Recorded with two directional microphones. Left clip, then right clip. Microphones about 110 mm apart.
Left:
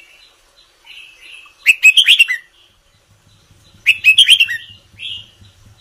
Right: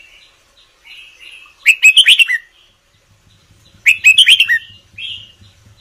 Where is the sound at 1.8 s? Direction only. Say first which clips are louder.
Right 1 dB; 25° right (ahead or behind).